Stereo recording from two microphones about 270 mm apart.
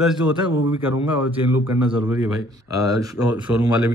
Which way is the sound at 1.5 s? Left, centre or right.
Left.